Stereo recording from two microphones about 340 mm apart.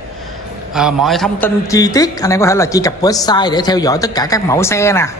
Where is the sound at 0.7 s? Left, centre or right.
Centre.